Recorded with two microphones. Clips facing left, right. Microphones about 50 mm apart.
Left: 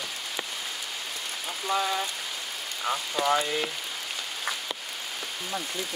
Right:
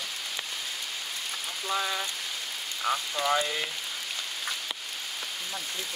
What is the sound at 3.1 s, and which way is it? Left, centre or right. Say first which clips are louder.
Speech: left 5 dB; centre.